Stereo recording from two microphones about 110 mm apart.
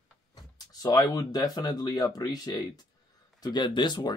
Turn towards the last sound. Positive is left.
turn(degrees=45)  # may be behind; listen again after turning